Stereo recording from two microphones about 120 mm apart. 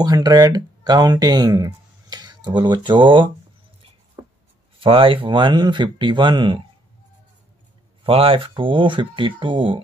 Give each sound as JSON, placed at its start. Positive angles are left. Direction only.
{"t": 0.0, "sound": "speech", "side_deg": -35}
{"t": 4.2, "sound": "writing", "side_deg": -20}
{"t": 4.7, "sound": "speech", "side_deg": -50}
{"t": 8.0, "sound": "speech", "side_deg": -50}